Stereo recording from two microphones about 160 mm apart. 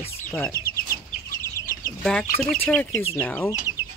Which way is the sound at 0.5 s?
20° left (ahead or behind).